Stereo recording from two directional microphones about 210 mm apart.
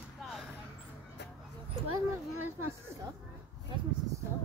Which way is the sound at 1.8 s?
90° right.